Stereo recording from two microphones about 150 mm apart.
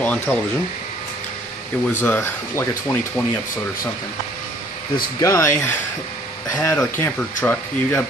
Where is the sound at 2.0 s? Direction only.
15° left (ahead or behind).